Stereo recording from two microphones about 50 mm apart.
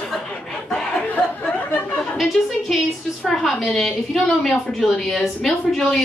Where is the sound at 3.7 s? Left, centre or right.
Centre.